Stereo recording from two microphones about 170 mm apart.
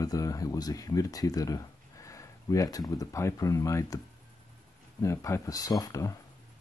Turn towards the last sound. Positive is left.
turn(degrees=20)  # may be behind; listen again after turning